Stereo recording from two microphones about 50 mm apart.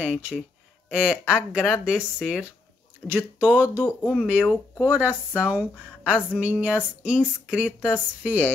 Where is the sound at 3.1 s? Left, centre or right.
Right.